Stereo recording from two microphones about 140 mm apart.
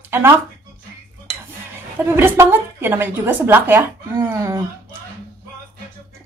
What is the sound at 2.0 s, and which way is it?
A woman's voice, 15° right (ahead or behind).